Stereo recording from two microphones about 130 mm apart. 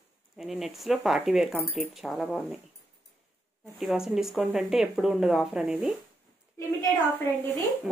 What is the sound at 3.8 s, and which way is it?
Speech, 5° right (ahead or behind).